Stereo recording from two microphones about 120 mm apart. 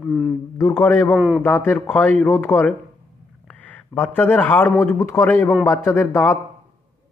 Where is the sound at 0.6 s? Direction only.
25° left (ahead or behind).